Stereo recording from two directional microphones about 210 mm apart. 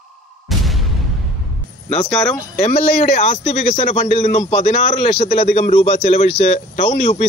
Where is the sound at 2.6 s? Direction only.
35° left (ahead or behind).